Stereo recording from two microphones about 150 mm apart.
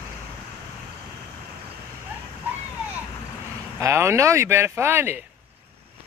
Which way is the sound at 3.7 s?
20° right (ahead or behind).